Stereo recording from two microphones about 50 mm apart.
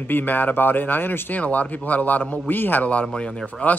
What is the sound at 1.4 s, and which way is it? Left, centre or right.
A man's voice, left.